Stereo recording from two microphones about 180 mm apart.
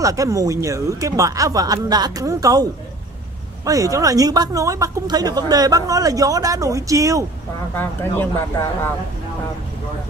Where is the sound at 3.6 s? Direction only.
20° right (ahead or behind).